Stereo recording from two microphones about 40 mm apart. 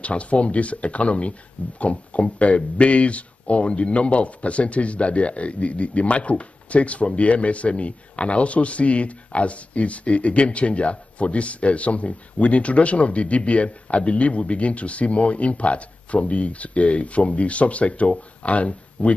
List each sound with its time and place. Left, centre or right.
0.0 s speech: left